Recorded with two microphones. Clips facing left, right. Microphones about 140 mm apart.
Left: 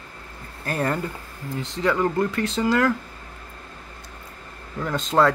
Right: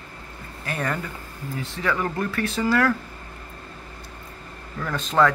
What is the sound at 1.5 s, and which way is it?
Speech, 25° left (ahead or behind).